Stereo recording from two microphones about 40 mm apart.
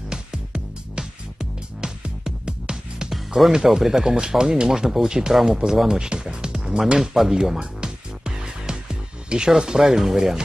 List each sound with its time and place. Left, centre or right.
0.1 s music: right
3.1 s speech: centre
7.5 s music: right
9.5 s speech: centre